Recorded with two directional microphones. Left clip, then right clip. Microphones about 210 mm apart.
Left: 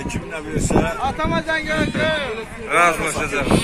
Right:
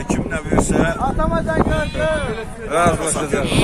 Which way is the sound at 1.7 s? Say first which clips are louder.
Even; 20° right (ahead or behind).